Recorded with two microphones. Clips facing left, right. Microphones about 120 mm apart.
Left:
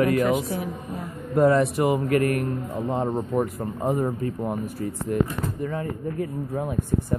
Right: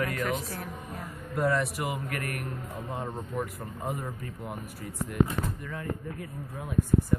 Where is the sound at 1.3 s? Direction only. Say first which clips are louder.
Left 9 dB; 30° left (ahead or behind).